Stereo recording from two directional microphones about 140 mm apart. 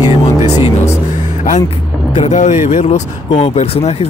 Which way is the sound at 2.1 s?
55° left (ahead or behind).